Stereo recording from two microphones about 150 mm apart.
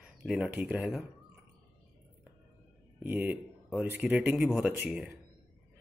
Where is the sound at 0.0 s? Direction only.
5° right (ahead or behind).